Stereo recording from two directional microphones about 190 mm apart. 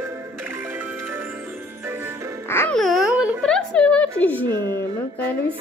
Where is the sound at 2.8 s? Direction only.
Centre (ahead or behind).